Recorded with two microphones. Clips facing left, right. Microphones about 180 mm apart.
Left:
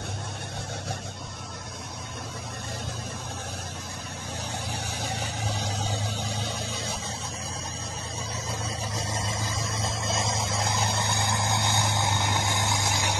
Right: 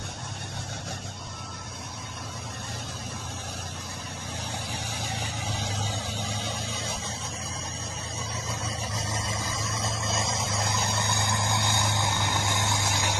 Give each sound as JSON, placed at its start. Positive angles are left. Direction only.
{"t": 5.0, "sound": "vehicle", "side_deg": 45}
{"t": 8.5, "sound": "vehicle", "side_deg": 30}